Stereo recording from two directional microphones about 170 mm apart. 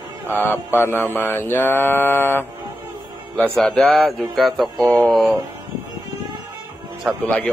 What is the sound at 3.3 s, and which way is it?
Speech, 10° left (ahead or behind).